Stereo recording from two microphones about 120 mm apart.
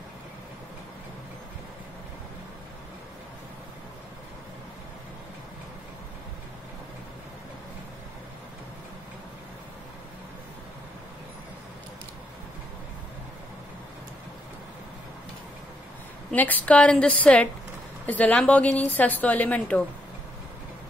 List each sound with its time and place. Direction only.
16.3 s a woman's voice: 15° left (ahead or behind)